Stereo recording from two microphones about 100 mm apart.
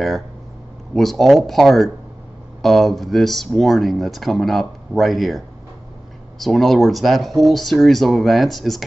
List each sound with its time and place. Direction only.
0.9 s speech: centre (ahead or behind)
6.4 s speech: centre (ahead or behind)